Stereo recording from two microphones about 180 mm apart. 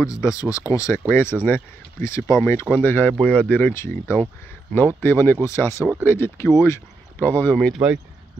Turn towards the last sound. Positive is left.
turn(degrees=5)  # may be behind; listen again after turning